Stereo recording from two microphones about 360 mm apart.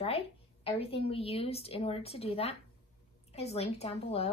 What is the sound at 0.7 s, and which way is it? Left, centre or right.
Speech, centre.